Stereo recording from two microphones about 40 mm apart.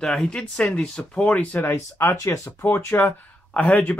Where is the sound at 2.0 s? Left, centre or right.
Left.